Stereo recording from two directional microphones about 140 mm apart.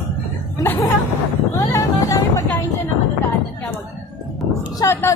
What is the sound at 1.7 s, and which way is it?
Vehicle, 25° left (ahead or behind).